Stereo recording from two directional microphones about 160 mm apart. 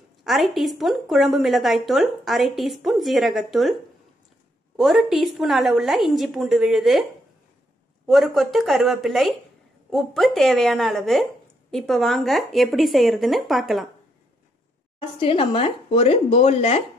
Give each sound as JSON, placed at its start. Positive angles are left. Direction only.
{"t": 0.2, "sound": "speech", "side_deg": 0}
{"t": 4.7, "sound": "speech", "side_deg": 0}
{"t": 8.1, "sound": "speech", "side_deg": 0}
{"t": 15.0, "sound": "speech", "side_deg": 35}